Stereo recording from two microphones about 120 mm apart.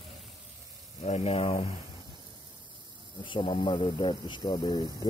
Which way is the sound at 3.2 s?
45° left (ahead or behind).